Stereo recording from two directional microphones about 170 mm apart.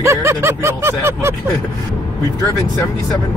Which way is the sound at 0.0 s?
15° right (ahead or behind).